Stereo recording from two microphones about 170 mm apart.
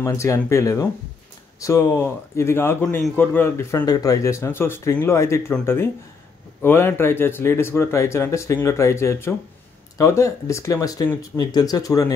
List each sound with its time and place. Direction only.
0.0 s speech: 15° left (ahead or behind)